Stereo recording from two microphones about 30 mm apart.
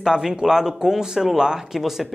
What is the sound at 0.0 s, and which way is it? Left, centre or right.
Speech, centre.